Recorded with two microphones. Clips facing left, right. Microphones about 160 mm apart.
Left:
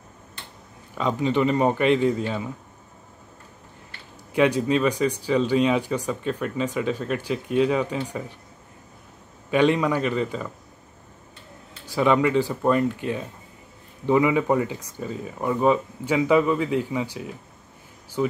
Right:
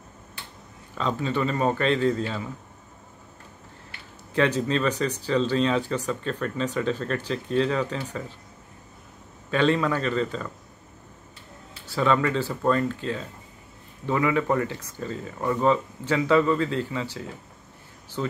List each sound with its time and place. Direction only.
0.9 s speech: 15° left (ahead or behind)
4.3 s speech: 10° left (ahead or behind)
9.5 s speech: 15° left (ahead or behind)
11.8 s speech: 15° left (ahead or behind)